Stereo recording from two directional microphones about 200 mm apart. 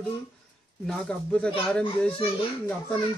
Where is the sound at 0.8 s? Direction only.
5° left (ahead or behind).